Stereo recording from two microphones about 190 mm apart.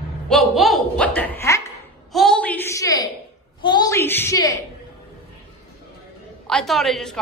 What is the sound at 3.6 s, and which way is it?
A woman's voice, 20° left (ahead or behind).